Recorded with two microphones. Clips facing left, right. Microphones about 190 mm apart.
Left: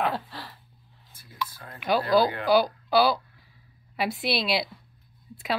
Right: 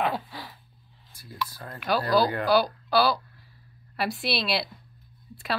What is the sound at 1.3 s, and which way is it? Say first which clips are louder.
Speech: right 1 dB; 40° right (ahead or behind).